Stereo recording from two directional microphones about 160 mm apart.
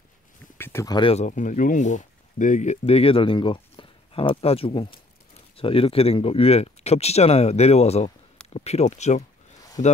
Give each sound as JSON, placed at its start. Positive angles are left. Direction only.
{"t": 0.6, "sound": "a sound", "side_deg": 15}
{"t": 0.9, "sound": "speech", "side_deg": 35}
{"t": 1.2, "sound": "speech", "side_deg": 50}